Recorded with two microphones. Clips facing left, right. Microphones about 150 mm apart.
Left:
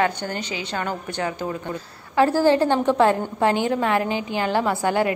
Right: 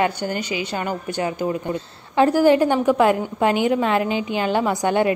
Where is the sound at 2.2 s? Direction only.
15° right (ahead or behind).